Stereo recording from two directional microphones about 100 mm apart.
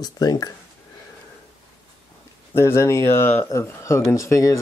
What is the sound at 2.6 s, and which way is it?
Speech, 25° left (ahead or behind).